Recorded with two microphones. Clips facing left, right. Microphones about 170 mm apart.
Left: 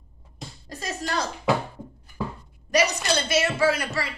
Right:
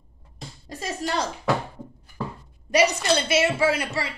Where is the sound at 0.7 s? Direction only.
30° right (ahead or behind).